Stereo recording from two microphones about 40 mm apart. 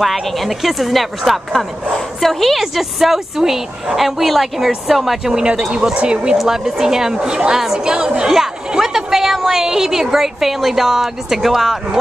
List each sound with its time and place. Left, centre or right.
0.0 s a woman's voice: centre
5.3 s a woman's voice: right
6.3 s a woman's voice: centre